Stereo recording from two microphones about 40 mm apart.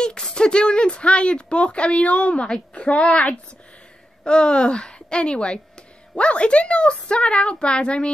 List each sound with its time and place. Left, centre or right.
0.0 s a child's voice: centre